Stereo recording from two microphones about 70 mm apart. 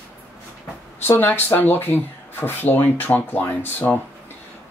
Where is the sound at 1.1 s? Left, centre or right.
Left.